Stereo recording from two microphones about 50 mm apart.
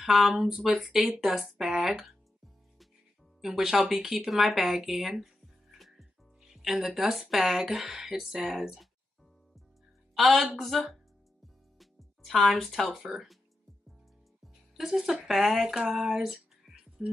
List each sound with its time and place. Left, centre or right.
0.0 s speech: centre
1.7 s speech: centre
2.0 s music: centre
3.3 s speech: centre
4.3 s music: centre
7.0 s speech: centre
10.1 s a woman's voice: centre
11.4 s music: centre
14.8 s speech: centre
17.0 s speech: centre